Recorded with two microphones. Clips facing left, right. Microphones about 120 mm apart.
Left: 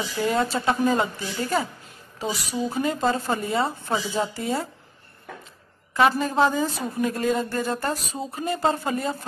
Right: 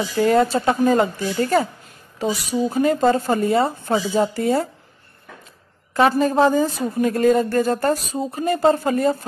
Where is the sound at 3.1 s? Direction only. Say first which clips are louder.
Right 7 dB; 45° right (ahead or behind).